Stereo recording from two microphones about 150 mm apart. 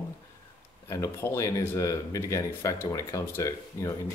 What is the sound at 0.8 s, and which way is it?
Speech, 20° left (ahead or behind).